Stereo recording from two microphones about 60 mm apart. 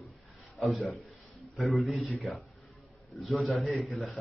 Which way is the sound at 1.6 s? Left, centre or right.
Centre.